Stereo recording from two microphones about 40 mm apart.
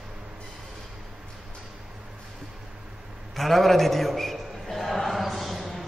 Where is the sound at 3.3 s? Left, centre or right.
Centre.